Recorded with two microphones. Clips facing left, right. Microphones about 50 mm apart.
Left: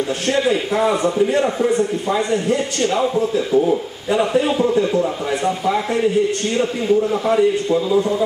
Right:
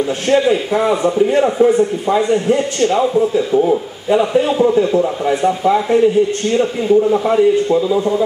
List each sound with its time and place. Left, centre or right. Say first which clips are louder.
0.5 s a man's voice: right 3 dB; centre
3.2 s speech: right 3 dB; centre
4.2 s a man's voice: right 2 dB; centre